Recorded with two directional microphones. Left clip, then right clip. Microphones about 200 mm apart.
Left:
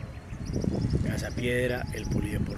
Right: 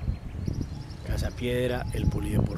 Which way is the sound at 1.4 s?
15° right (ahead or behind).